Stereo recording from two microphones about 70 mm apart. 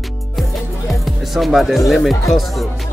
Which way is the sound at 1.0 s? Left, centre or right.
Centre.